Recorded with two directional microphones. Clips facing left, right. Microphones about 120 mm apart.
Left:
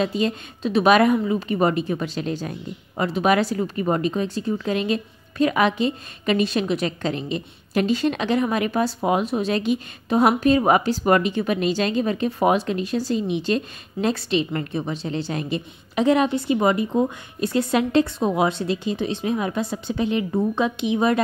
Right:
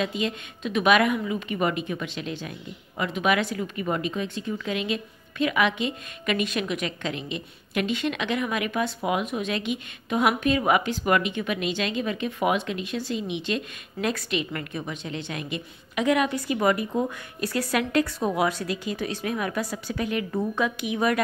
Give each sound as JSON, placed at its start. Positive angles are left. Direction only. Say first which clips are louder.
{"t": 0.0, "sound": "speech", "louder": "left 5 dB", "side_deg": 35}